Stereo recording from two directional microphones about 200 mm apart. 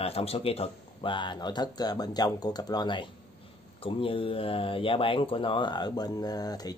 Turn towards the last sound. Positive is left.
turn(degrees=20)  # may be behind; listen again after turning